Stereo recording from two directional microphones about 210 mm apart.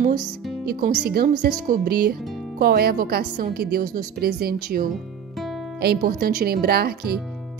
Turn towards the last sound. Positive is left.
turn(degrees=-50)  # may be behind; listen again after turning